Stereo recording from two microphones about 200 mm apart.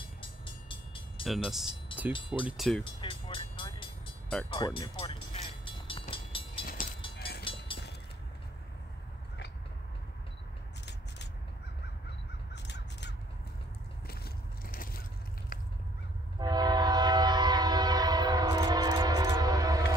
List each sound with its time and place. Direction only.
0.2 s train: 25° left (ahead or behind)
1.2 s speech: centre (ahead or behind)
2.8 s vehicle: 25° left (ahead or behind)
6.6 s vehicle: 45° left (ahead or behind)
7.2 s train: 50° left (ahead or behind)
7.4 s a sound: 25° left (ahead or behind)
12.6 s crow: 60° left (ahead or behind)
14.0 s crushing: 50° left (ahead or behind)
15.5 s a sound: 45° left (ahead or behind)
16.3 s train: 20° right (ahead or behind)